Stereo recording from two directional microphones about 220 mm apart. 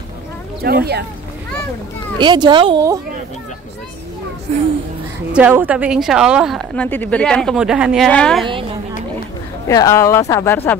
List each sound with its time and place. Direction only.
0.6 s speech: 45° right (ahead or behind)
2.1 s a woman's voice: 20° right (ahead or behind)
4.5 s a child's voice: 30° right (ahead or behind)
5.3 s speech: 10° right (ahead or behind)
9.7 s speech: 15° left (ahead or behind)